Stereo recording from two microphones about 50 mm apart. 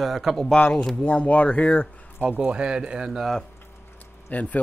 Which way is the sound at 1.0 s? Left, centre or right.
Left.